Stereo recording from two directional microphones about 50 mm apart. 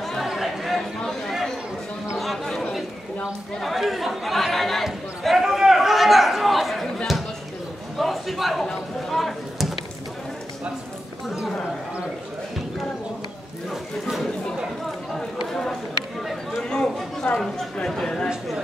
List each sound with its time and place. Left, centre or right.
0.0 s chatter: centre
2.1 s chatter: centre
3.5 s speech: centre
5.4 s chatter: centre
8.0 s speech: centre
14.0 s speech: centre
14.9 s run: centre
16.2 s speech: centre
16.6 s speech: centre
17.3 s speech: left
17.8 s speech: centre